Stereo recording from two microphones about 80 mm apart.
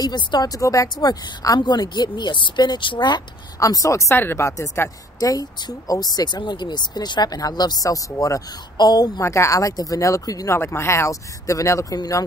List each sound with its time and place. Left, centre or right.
0.0 s speech: left
3.5 s speech: left
4.2 s speech: left
5.3 s speech: left
9.2 s speech: left
10.6 s speech: left